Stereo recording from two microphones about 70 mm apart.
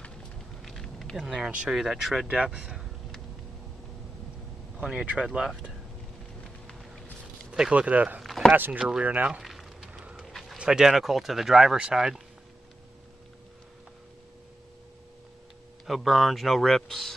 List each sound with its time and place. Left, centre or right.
0.6 s a sound: centre
1.2 s speech: centre
2.2 s speech: centre
4.7 s speech: centre
7.5 s speech: centre
9.3 s a sound: centre
10.6 s speech: centre
15.9 s speech: centre